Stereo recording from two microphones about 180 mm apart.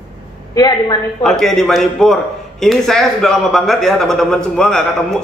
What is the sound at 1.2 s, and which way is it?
A man's voice, centre (ahead or behind).